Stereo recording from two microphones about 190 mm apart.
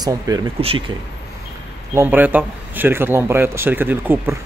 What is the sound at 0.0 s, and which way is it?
Speech, 20° right (ahead or behind).